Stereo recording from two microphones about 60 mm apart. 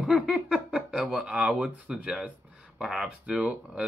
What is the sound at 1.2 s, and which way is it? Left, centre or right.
Speech, centre.